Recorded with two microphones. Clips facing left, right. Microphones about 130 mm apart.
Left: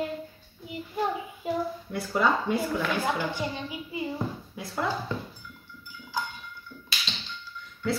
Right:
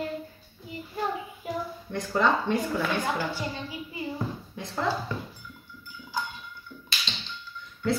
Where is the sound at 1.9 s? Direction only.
10° left (ahead or behind).